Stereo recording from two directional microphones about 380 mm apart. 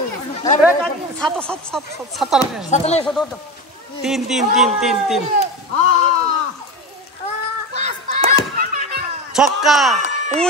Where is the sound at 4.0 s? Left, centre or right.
Centre.